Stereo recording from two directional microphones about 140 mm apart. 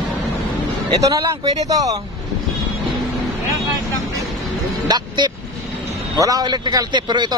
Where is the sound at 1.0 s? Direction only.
25° right (ahead or behind).